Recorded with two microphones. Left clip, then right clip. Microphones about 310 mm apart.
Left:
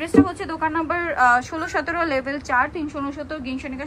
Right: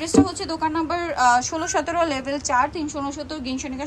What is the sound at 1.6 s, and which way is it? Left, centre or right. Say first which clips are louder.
A woman's voice: right 1 dB; centre.